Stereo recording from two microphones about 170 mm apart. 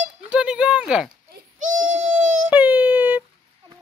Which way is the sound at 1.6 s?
50° right (ahead or behind).